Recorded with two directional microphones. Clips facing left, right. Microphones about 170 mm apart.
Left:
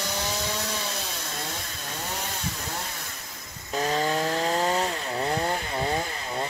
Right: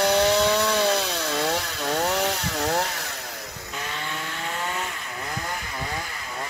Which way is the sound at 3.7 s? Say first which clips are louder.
Left 9 dB; 40° left (ahead or behind).